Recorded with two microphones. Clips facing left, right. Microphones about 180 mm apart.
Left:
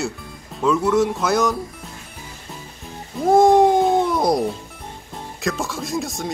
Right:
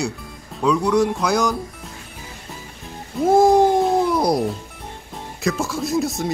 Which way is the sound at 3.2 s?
Centre (ahead or behind).